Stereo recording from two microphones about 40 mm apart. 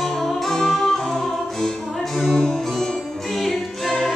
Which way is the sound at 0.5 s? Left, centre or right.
Centre.